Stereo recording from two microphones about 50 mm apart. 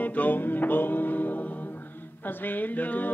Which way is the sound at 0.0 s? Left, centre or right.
Left.